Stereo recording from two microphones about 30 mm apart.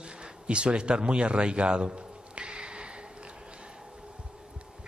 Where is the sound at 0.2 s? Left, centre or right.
Right.